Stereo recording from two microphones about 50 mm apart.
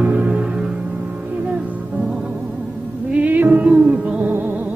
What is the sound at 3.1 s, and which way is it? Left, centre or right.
Music, right.